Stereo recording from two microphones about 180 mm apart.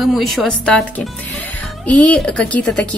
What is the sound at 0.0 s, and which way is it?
A woman's voice, centre (ahead or behind).